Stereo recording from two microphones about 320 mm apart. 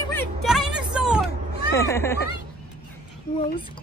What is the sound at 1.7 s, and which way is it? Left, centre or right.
Speech, centre.